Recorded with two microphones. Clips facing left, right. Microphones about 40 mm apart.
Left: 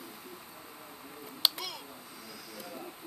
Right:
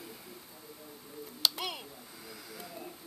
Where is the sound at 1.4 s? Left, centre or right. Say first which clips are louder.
Left 1 dB; left.